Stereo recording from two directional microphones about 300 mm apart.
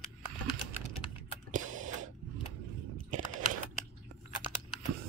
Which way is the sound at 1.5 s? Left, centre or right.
Right.